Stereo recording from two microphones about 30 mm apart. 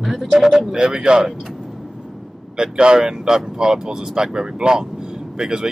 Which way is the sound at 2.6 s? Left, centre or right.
Right.